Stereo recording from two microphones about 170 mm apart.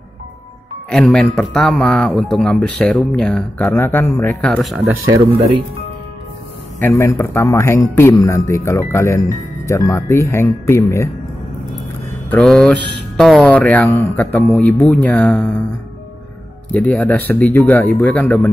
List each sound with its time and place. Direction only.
0.8 s a man's voice: 5° left (ahead or behind)
6.8 s a man's voice: 15° left (ahead or behind)
12.3 s a man's voice: 5° left (ahead or behind)
16.7 s a man's voice: 10° left (ahead or behind)